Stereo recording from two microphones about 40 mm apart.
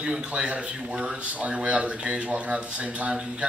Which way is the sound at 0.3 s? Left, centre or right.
Right.